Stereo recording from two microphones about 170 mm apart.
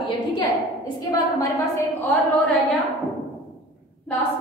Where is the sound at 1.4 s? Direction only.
20° left (ahead or behind).